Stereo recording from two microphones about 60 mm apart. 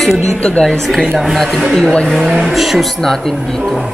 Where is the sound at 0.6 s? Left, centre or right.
Centre.